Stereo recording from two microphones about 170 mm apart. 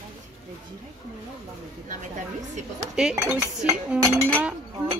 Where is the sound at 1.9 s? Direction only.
45° right (ahead or behind).